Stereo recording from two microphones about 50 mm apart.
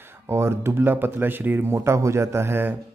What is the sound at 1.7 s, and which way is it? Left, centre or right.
Speech, right.